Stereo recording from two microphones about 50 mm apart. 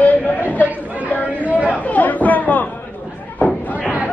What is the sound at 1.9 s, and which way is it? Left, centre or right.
Chatter, left.